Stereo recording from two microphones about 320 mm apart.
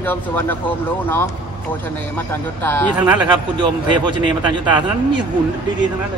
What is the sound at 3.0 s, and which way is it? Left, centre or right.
A man's voice, centre.